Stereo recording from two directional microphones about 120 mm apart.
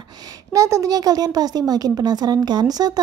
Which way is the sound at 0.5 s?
25° right (ahead or behind).